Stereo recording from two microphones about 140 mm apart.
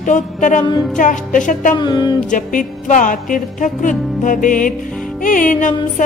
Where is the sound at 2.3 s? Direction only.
65° left (ahead or behind).